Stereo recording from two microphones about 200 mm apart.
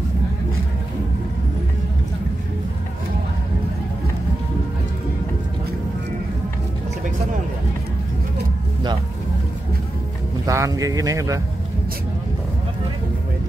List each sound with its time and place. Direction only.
10.4 s speech: 15° right (ahead or behind)